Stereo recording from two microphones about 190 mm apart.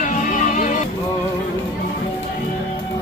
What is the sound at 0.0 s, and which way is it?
Music, 40° left (ahead or behind).